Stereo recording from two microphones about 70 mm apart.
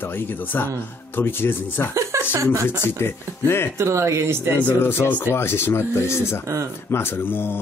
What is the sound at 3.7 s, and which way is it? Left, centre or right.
Speech, right.